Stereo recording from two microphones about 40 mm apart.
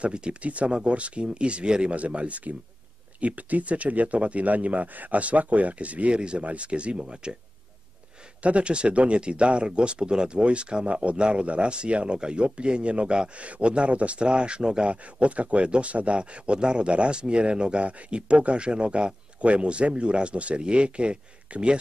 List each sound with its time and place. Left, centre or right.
0.0 s speech: right
2.0 s speech: right
8.4 s speech: right